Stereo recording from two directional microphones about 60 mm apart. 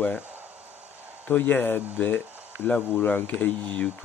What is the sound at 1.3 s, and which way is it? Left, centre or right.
Speech, left.